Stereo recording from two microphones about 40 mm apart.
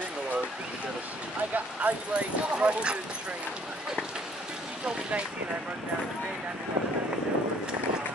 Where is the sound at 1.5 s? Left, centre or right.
Right.